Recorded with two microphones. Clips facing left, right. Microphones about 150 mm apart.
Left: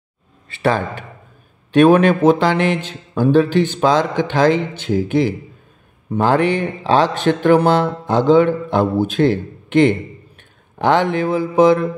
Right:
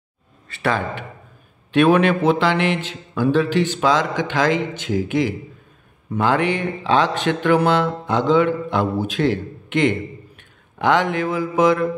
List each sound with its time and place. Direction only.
0.6 s speech: 35° left (ahead or behind)